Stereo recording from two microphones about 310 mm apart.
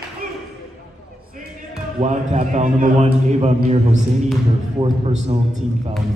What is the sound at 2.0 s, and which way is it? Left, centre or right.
A man's voice, right.